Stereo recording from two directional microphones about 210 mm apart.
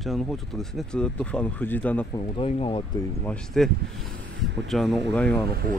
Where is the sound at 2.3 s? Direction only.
25° left (ahead or behind).